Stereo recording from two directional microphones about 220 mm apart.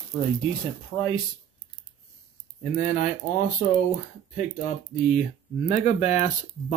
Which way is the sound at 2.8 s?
35° left (ahead or behind).